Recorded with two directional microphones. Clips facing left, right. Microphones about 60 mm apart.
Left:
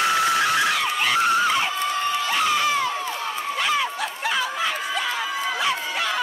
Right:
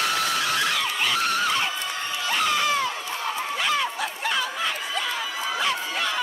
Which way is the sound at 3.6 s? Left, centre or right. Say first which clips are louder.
Left 3 dB; centre.